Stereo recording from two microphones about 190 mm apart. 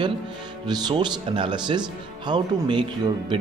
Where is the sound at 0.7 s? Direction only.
20° right (ahead or behind).